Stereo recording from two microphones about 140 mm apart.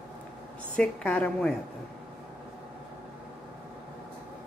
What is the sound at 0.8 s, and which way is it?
Speech, 5° left (ahead or behind).